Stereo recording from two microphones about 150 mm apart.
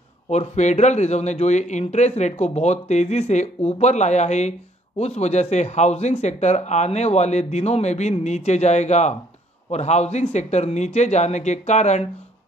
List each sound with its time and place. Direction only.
0.3 s a man's voice: 50° left (ahead or behind)